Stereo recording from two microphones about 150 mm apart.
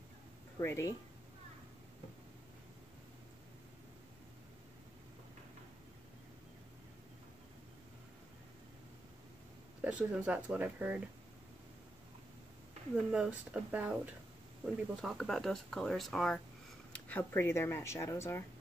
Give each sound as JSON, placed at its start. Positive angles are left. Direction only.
{"t": 0.6, "sound": "speech", "side_deg": 20}
{"t": 9.8, "sound": "speech", "side_deg": -10}
{"t": 12.9, "sound": "speech", "side_deg": -5}
{"t": 16.9, "sound": "speech", "side_deg": 15}